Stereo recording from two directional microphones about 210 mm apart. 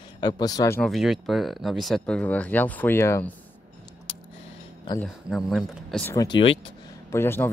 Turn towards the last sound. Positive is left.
turn(degrees=10)  # may be behind; listen again after turning